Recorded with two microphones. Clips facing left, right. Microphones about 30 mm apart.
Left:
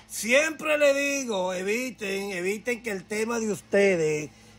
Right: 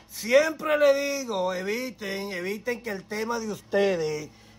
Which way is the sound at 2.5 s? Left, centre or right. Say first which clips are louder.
Left 1 dB; left.